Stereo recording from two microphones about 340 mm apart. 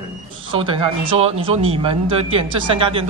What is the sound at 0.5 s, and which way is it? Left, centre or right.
Speech, centre.